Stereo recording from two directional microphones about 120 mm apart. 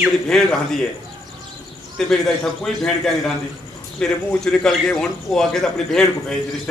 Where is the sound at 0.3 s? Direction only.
5° left (ahead or behind).